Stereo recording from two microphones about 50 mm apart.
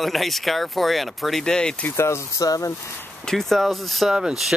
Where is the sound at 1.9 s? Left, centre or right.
Left.